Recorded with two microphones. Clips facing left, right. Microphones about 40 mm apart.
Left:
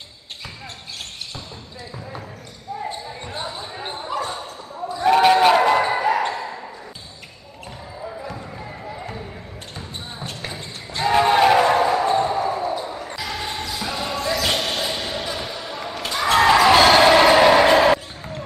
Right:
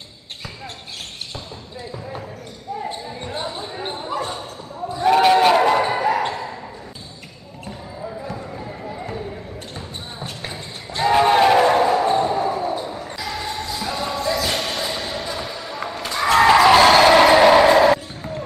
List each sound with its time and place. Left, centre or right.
2.9 s basketball bounce: centre
8.3 s basketball bounce: centre
13.4 s basketball bounce: left
14.0 s basketball bounce: centre
14.7 s a sound: centre
15.5 s basketball bounce: centre
16.3 s basketball bounce: centre
17.7 s basketball bounce: left